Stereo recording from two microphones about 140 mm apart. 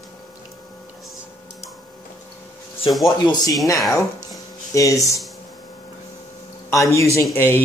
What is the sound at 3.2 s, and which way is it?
Speech, 30° left (ahead or behind).